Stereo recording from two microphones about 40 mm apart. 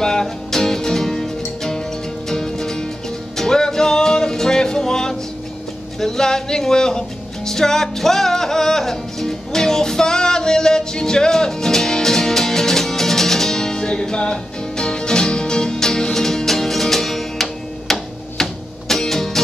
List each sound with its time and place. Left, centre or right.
0.0 s music: centre